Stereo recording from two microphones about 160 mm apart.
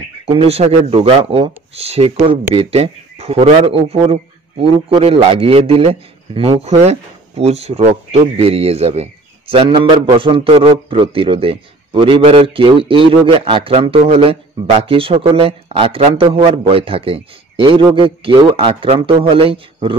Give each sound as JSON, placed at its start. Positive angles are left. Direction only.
{"t": 0.3, "sound": "a man's voice", "side_deg": -40}